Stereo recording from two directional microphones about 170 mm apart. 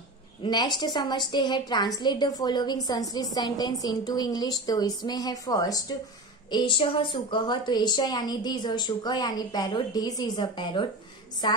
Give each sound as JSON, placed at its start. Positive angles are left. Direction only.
{"t": 0.4, "sound": "a woman's voice", "side_deg": 25}